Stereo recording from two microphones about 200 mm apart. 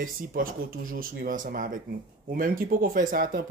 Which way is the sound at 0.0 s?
45° right (ahead or behind).